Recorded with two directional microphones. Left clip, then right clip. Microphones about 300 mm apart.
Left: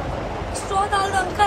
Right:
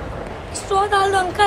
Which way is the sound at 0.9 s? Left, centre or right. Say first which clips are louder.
Right 4 dB; right.